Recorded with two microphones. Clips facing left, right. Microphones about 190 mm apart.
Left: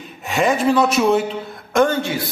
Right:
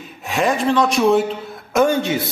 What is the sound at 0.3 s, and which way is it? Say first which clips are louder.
A woman's voice: left 1 dB; centre (ahead or behind).